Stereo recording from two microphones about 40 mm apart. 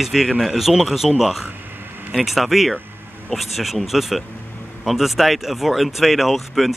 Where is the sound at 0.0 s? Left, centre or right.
Centre.